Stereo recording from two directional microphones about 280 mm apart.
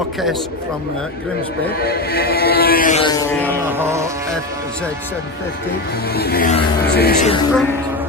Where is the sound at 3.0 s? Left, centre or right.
Centre.